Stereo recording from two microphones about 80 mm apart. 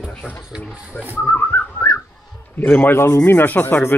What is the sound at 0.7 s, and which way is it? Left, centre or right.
Speech, centre.